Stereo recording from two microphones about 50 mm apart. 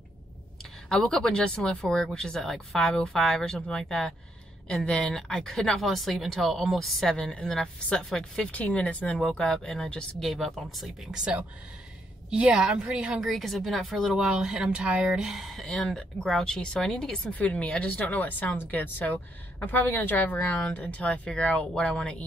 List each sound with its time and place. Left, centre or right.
0.8 s speech: centre
8.5 s speech: left
10.2 s speech: centre
11.1 s a woman's voice: centre
13.2 s speech: centre
14.1 s speech: centre
15.3 s speech: centre
17.3 s speech: left